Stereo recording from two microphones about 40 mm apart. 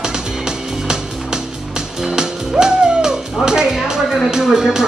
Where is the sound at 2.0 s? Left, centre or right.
Centre.